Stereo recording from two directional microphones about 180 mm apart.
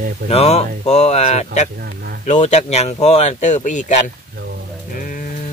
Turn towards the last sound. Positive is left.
turn(degrees=45)  # may be behind; listen again after turning